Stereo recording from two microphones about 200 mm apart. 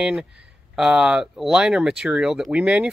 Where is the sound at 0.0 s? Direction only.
5° right (ahead or behind).